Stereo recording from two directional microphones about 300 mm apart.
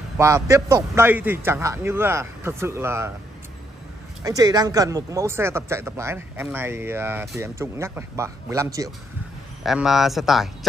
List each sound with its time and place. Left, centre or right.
0.2 s speech: centre
4.2 s speech: centre